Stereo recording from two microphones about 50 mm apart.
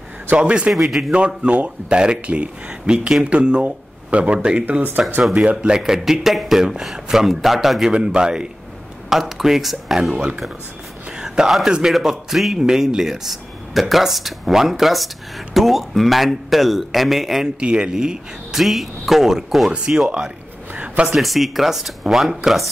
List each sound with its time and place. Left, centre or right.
0.3 s speech: right
0.7 s speech: centre
1.1 s speech: right
5.8 s a man's voice: centre
7.9 s a man's voice: centre
9.1 s speech: centre
11.1 s whispering: centre
11.9 s speech: centre
17.6 s a man's voice: centre
18.5 s a man's voice: centre
20.7 s a sound: right
21.2 s speech: centre